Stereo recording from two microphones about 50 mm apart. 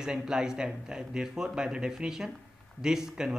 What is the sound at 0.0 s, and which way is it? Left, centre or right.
Speech, centre.